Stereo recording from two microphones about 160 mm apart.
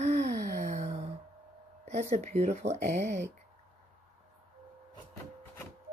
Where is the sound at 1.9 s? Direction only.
45° right (ahead or behind).